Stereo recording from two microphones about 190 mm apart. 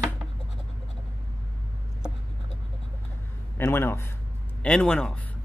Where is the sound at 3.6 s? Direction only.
10° left (ahead or behind).